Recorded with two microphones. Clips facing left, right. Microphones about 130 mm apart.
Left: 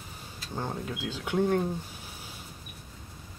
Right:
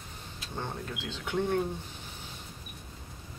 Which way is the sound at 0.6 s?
10° left (ahead or behind).